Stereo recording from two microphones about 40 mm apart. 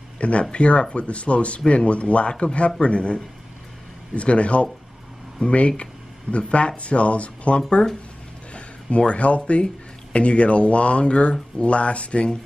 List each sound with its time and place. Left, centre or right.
0.2 s speech: left